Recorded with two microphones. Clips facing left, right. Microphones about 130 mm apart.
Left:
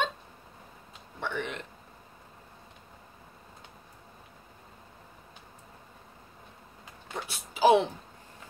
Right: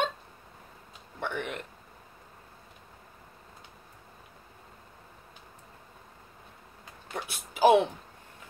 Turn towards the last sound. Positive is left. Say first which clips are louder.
# right 1 dB
turn(degrees=-50)  # may be behind; listen again after turning